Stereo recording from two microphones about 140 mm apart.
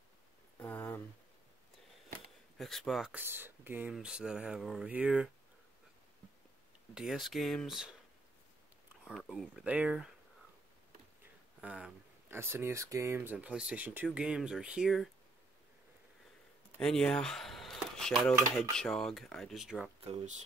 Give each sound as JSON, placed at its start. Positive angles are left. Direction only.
{"t": 0.6, "sound": "a sound", "side_deg": 15}
{"t": 2.5, "sound": "speech", "side_deg": 5}
{"t": 3.2, "sound": "speech", "side_deg": -15}
{"t": 6.9, "sound": "speech", "side_deg": -5}
{"t": 9.3, "sound": "speech", "side_deg": -5}
{"t": 11.6, "sound": "speech", "side_deg": -10}
{"t": 16.8, "sound": "speech", "side_deg": 5}
{"t": 20.0, "sound": "speech", "side_deg": -50}